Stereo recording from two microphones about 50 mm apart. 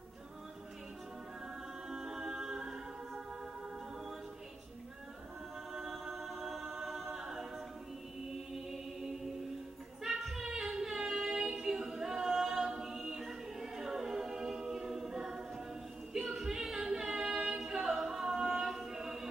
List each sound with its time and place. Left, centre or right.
1.9 s music: centre
5.7 s a capella: centre
8.3 s chant: centre
10.0 s music: centre
10.4 s a capella: centre